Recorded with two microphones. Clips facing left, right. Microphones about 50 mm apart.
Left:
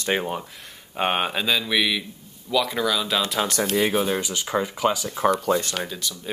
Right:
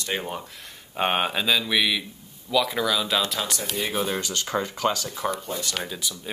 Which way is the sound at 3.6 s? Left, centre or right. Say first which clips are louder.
Left 8 dB; left.